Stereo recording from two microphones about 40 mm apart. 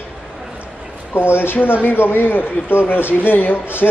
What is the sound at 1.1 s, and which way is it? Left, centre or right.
Speech, left.